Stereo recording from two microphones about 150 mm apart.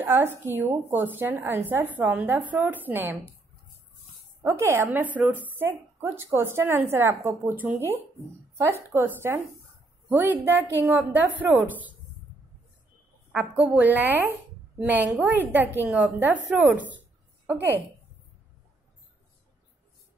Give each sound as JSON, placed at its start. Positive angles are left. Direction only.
{"t": 0.0, "sound": "a woman's voice", "side_deg": -15}
{"t": 4.4, "sound": "a woman's voice", "side_deg": -20}
{"t": 13.3, "sound": "a woman's voice", "side_deg": -5}